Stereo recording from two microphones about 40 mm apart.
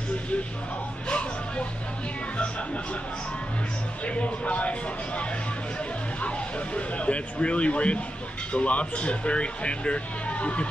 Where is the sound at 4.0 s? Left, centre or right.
Left.